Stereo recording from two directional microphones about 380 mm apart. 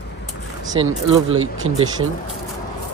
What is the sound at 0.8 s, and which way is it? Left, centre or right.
Speech, right.